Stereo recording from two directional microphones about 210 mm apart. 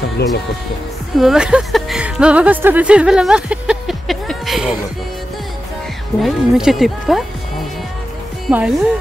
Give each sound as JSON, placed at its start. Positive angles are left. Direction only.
{"t": 0.2, "sound": "music", "side_deg": 50}
{"t": 1.1, "sound": "speech", "side_deg": 0}
{"t": 6.2, "sound": "speech", "side_deg": 0}
{"t": 8.5, "sound": "speech", "side_deg": -5}